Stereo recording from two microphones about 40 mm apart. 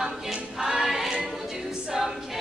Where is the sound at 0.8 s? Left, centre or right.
Centre.